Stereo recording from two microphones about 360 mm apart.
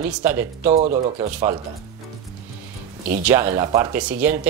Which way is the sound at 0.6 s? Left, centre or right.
Centre.